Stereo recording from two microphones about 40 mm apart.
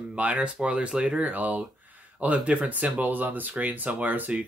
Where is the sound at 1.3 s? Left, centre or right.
Right.